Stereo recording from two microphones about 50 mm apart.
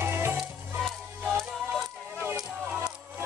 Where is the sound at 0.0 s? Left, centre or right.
Right.